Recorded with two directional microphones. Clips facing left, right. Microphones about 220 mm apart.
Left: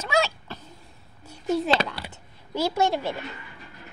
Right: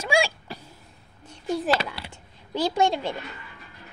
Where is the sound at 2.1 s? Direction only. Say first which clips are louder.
Even; 15° right (ahead or behind).